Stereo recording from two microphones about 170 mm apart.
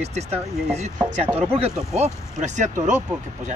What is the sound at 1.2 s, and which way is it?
Speech, 10° right (ahead or behind).